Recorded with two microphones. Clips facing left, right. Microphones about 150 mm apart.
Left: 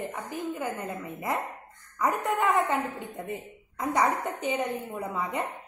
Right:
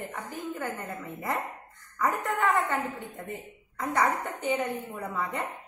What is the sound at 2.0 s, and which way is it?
A woman's voice, 20° left (ahead or behind).